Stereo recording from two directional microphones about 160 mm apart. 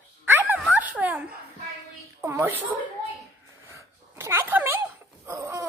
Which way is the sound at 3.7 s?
15° right (ahead or behind).